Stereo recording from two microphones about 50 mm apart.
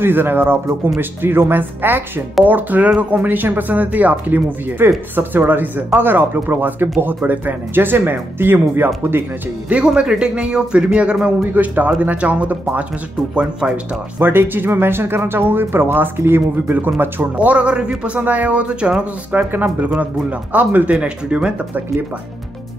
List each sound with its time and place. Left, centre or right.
0.0 s speech: right
9.8 s speech: centre
11.5 s speech: right
14.2 s speech: right
17.4 s speech: right
19.3 s speech: right